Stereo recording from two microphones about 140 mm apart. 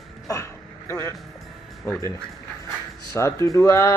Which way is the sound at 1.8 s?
15° left (ahead or behind).